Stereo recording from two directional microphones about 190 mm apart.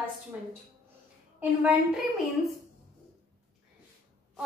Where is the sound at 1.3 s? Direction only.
5° right (ahead or behind).